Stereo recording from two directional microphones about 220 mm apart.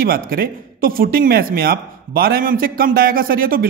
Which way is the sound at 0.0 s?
40° right (ahead or behind).